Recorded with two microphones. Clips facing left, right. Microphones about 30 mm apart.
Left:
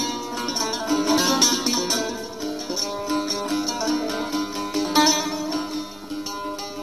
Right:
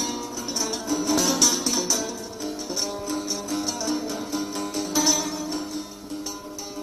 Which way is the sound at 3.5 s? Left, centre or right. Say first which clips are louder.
Left 2 dB; left.